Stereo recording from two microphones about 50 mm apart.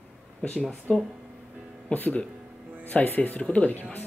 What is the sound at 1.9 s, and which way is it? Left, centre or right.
Speech, left.